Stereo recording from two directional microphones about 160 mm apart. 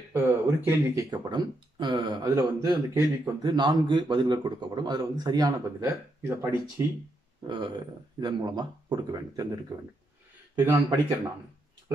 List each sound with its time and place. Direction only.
0.1 s speech: 15° right (ahead or behind)
1.1 s a man's voice: 30° right (ahead or behind)
7.4 s a man's voice: 30° right (ahead or behind)